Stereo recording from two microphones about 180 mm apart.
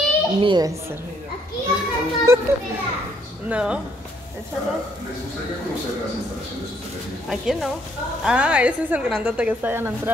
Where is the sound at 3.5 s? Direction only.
5° right (ahead or behind).